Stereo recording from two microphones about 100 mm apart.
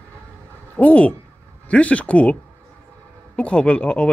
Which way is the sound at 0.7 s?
15° left (ahead or behind).